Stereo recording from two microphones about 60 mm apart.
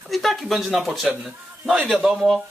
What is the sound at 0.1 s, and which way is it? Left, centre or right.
A man's voice, centre.